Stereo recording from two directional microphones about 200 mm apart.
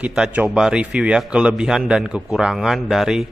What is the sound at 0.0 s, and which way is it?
A man's voice, 5° right (ahead or behind).